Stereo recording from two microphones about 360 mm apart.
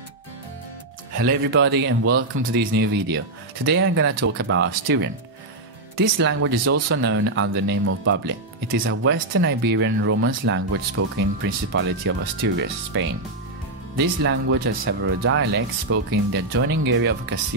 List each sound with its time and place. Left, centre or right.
1.1 s speech: right
5.9 s speech: right
14.2 s speech: right